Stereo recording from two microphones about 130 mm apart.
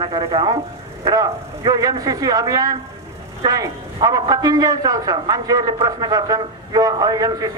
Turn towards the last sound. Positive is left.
turn(degrees=-30)  # may be behind; listen again after turning